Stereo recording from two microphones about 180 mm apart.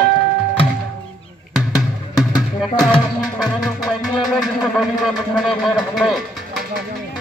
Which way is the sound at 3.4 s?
Centre (ahead or behind).